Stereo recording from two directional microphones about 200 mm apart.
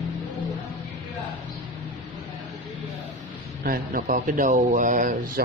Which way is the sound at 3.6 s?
45° right (ahead or behind).